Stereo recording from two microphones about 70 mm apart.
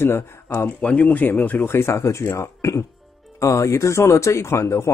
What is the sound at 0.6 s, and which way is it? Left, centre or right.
Speech, centre.